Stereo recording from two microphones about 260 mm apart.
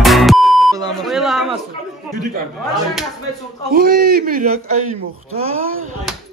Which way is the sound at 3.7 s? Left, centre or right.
Right.